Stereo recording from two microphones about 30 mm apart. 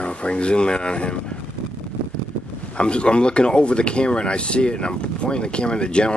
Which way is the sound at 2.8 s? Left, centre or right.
Left.